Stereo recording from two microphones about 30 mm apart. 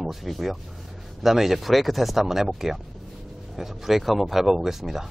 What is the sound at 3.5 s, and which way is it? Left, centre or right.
Speech, centre.